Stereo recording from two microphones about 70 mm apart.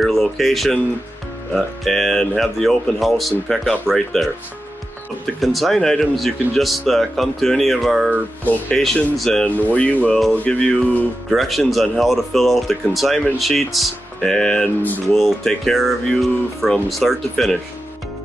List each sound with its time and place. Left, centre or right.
0.0 s speech: centre
1.9 s speech: centre
9.5 s speech: left
11.2 s speech: centre